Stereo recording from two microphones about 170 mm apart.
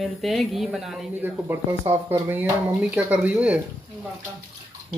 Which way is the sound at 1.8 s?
35° right (ahead or behind).